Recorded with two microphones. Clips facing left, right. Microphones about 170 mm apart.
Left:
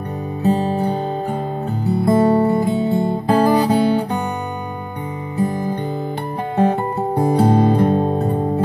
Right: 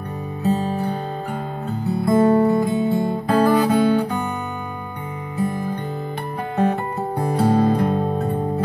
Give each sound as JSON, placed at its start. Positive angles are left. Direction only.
{"t": 0.4, "sound": "music", "side_deg": 25}
{"t": 2.0, "sound": "music", "side_deg": 35}
{"t": 5.4, "sound": "music", "side_deg": 25}